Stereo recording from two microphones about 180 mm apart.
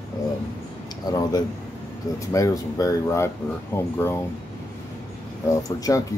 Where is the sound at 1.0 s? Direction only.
20° left (ahead or behind).